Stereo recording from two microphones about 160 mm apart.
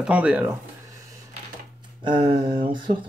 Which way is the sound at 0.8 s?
20° right (ahead or behind).